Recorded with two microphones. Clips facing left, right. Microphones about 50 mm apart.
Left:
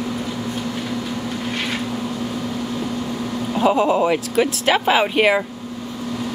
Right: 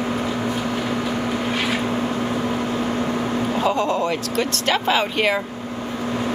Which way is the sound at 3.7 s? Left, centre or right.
Centre.